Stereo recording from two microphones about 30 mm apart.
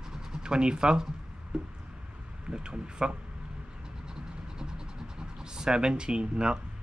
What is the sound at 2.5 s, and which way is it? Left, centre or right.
Speech, right.